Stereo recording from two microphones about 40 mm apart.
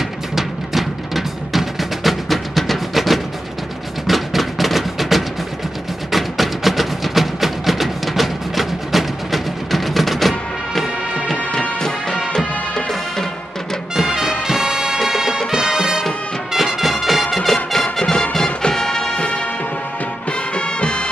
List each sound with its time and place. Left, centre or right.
0.4 s music: centre
12.4 s music: centre
14.1 s music: centre
16.5 s music: centre
19.1 s music: left